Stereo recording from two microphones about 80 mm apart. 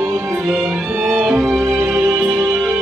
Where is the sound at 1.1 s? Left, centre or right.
Centre.